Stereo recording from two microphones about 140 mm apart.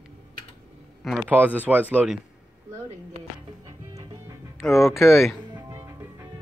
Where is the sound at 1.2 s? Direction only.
10° right (ahead or behind).